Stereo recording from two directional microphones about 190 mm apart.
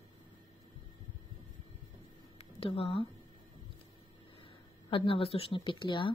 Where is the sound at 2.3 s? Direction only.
30° left (ahead or behind).